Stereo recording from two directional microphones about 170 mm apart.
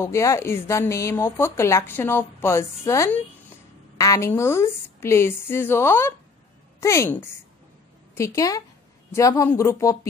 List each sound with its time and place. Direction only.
0.0 s a woman's voice: 15° left (ahead or behind)